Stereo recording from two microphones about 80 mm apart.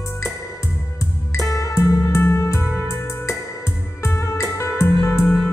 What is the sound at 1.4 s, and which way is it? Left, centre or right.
Music, left.